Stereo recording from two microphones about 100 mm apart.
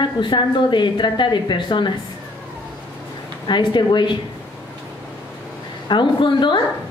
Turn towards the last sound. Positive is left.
turn(degrees=50)  # may be behind; listen again after turning